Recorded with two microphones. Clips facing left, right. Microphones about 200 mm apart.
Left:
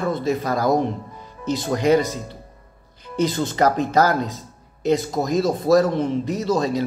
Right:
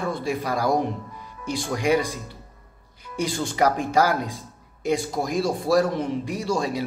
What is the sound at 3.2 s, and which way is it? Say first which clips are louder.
A man's voice: left 3 dB; 10° right (ahead or behind).